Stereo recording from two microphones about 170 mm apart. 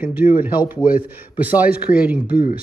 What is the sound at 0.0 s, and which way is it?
Speech, 10° right (ahead or behind).